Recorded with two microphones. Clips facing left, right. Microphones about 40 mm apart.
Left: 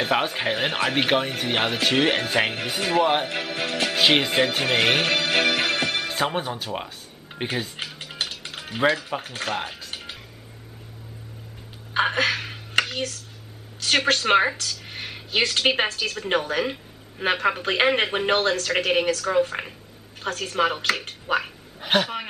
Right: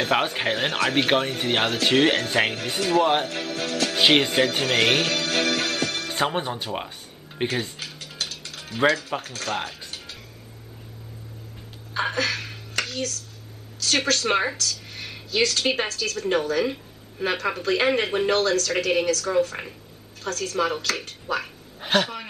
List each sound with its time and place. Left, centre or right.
0.1 s speech: centre
3.3 s a woman's voice: left
4.0 s speech: centre
4.3 s speech: centre
6.0 s speech: centre
7.7 s music: left
9.2 s a woman's voice: left
9.8 s music: left
11.9 s a sound: left
13.7 s a woman's voice: left
21.8 s speech: centre